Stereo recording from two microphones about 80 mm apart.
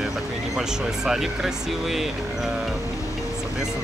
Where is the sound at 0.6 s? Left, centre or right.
Centre.